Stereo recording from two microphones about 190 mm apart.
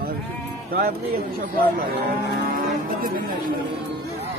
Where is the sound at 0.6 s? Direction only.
55° right (ahead or behind).